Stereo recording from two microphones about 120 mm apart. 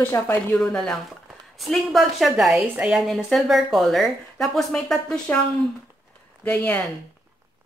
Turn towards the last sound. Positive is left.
turn(degrees=10)  # may be behind; listen again after turning